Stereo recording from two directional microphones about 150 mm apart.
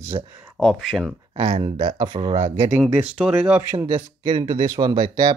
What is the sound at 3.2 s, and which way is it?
Speech, 5° right (ahead or behind).